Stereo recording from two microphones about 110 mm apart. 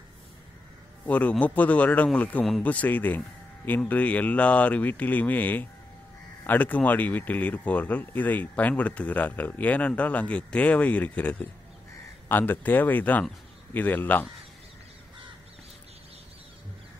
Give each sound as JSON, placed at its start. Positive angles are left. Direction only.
{"t": 1.0, "sound": "a man's voice", "side_deg": 15}